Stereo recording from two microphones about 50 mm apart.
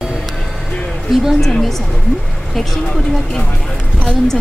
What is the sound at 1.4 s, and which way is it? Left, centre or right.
Speech, centre.